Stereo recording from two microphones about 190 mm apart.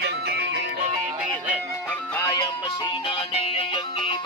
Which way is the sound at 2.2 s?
15° left (ahead or behind).